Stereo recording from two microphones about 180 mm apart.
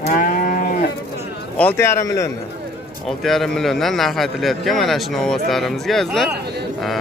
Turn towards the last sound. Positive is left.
turn(degrees=0)  # may be behind; listen again after turning